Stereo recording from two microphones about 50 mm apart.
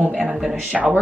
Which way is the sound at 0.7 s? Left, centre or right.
Right.